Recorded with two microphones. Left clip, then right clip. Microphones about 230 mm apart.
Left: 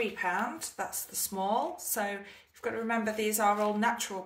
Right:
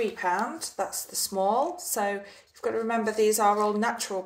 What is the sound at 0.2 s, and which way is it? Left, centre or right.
Speech, left.